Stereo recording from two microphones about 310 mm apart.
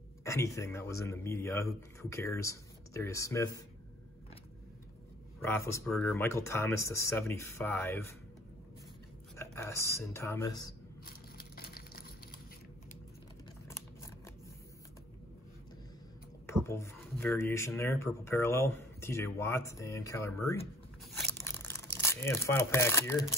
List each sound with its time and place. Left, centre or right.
0.2 s speech: centre
5.4 s speech: centre
9.4 s speech: centre
11.1 s a sound: left
16.6 s speech: centre
21.5 s speech: centre